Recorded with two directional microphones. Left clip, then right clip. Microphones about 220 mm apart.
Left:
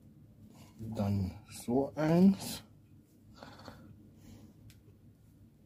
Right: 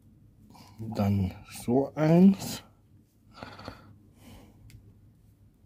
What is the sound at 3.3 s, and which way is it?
Gasp, 30° right (ahead or behind).